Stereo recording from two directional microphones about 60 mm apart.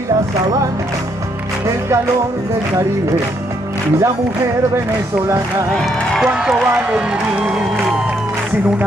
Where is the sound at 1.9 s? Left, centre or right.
Right.